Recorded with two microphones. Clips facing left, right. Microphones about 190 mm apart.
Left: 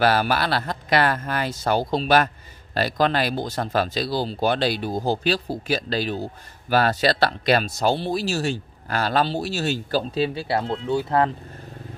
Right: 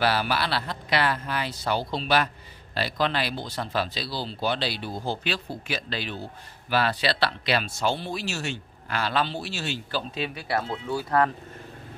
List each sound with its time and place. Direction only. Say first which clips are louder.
0.0 s speech: left 5 dB; 45° left (ahead or behind); by 11.3 s 25° left (ahead or behind)